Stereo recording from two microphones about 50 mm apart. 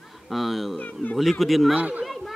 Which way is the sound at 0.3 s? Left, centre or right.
Centre.